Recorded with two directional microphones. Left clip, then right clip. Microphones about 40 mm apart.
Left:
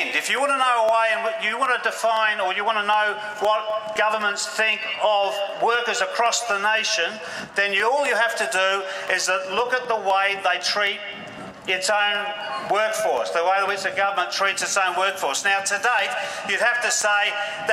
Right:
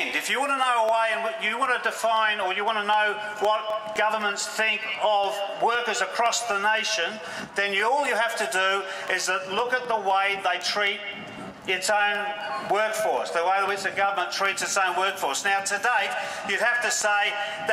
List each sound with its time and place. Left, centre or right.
0.0 s a man's voice: left